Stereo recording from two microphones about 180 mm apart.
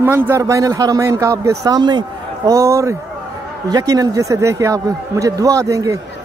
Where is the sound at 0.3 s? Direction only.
15° right (ahead or behind).